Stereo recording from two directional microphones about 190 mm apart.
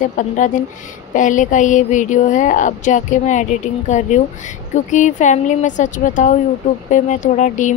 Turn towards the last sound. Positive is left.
turn(degrees=40)  # may be behind; listen again after turning